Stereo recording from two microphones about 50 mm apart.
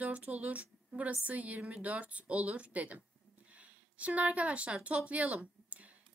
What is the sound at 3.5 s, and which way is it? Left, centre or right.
Speech, right.